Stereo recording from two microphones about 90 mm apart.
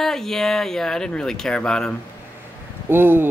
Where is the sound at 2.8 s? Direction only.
25° right (ahead or behind).